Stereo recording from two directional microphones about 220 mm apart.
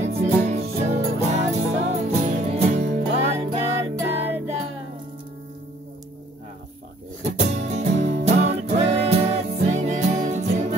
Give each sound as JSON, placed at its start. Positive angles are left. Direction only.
{"t": 0.0, "sound": "music", "side_deg": -30}
{"t": 7.2, "sound": "music", "side_deg": -30}